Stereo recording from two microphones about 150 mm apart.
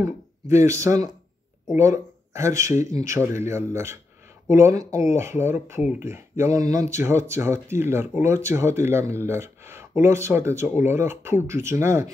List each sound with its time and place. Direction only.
0.0 s speech: 20° right (ahead or behind)